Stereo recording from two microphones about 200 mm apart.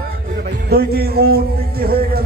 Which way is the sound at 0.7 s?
50° right (ahead or behind).